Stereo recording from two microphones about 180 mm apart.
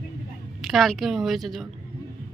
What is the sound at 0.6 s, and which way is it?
A woman's voice, centre (ahead or behind).